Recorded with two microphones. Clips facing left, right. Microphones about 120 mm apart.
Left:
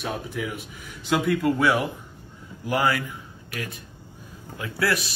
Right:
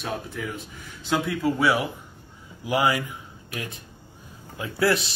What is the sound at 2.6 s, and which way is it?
Speech, 15° right (ahead or behind).